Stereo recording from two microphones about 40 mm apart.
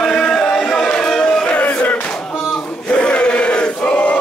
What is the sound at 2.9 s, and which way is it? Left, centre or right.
Chant, left.